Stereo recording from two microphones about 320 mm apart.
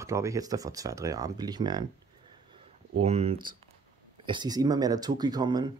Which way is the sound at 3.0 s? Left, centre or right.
Centre.